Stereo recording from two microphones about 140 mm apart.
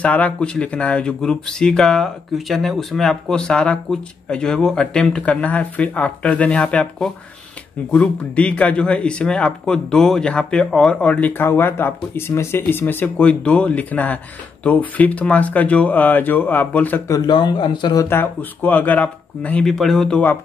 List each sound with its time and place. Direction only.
0.0 s speech: 10° left (ahead or behind)
17.1 s speech: 30° left (ahead or behind)
18.1 s speech: 15° left (ahead or behind)